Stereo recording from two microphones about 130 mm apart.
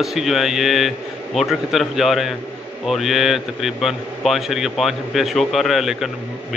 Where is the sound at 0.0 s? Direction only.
Centre (ahead or behind).